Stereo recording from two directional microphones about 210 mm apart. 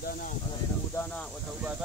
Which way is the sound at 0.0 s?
45° left (ahead or behind).